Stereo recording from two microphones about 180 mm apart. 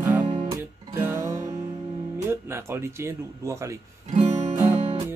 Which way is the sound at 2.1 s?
15° right (ahead or behind).